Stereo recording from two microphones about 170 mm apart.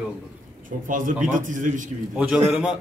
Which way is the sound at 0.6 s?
50° right (ahead or behind).